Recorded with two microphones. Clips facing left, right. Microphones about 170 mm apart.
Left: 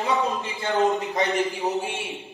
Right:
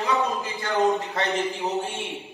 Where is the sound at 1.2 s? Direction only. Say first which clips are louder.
Left 2 dB; 15° left (ahead or behind).